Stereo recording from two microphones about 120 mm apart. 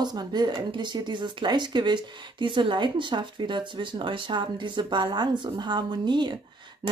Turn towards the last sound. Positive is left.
turn(degrees=-40)  # may be behind; listen again after turning